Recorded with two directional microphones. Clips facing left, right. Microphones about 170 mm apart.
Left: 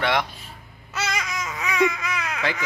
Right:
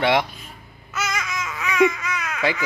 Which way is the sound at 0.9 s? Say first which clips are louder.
Right 1 dB; 30° left (ahead or behind).